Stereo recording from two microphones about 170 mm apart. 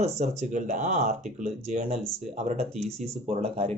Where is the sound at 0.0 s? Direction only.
40° right (ahead or behind).